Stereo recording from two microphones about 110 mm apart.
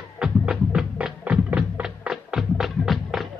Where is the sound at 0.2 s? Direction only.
5° right (ahead or behind).